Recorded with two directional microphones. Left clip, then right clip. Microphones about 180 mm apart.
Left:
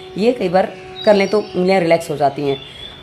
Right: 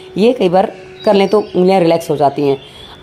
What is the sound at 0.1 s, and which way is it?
Speech, 20° right (ahead or behind).